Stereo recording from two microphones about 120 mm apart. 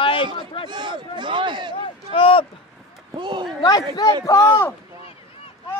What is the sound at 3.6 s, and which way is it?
A man's voice, 35° left (ahead or behind).